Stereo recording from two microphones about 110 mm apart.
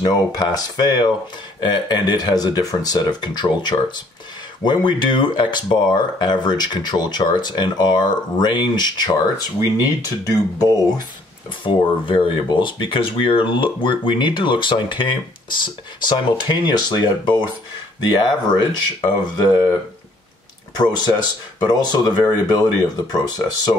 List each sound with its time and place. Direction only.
0.0 s speech: 40° left (ahead or behind)
10.3 s speech: 35° left (ahead or behind)
11.6 s speech: 50° left (ahead or behind)
20.9 s speech: 40° left (ahead or behind)